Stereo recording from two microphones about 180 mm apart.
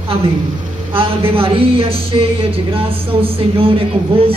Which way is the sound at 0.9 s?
30° right (ahead or behind).